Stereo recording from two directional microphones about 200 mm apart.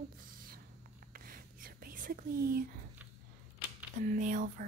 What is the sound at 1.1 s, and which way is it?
Whispering, 45° right (ahead or behind).